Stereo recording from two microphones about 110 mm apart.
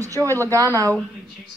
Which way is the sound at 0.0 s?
25° right (ahead or behind).